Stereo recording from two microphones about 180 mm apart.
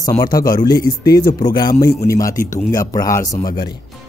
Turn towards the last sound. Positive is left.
turn(degrees=20)  # may be behind; listen again after turning